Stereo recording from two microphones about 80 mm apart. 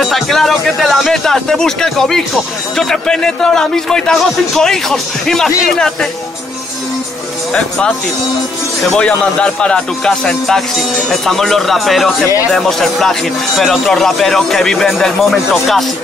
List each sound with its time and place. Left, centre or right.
0.0 s a man's voice: centre
8.8 s a man's voice: centre